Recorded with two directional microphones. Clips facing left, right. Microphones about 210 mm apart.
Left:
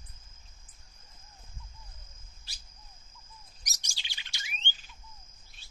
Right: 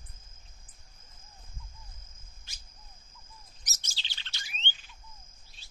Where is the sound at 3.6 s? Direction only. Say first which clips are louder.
Right 2 dB; 15° left (ahead or behind).